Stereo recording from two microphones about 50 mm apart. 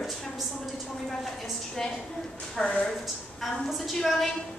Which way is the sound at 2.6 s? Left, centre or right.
Left.